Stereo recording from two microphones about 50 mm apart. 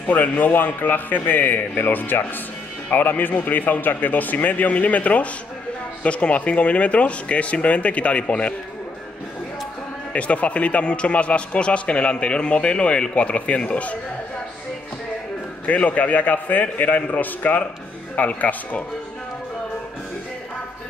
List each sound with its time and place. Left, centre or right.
0.1 s speech: left
10.1 s speech: left
15.6 s speech: left